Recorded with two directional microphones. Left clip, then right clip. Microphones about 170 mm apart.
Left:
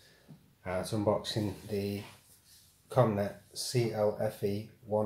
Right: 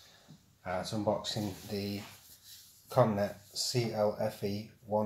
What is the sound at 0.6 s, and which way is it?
Speech, 25° left (ahead or behind).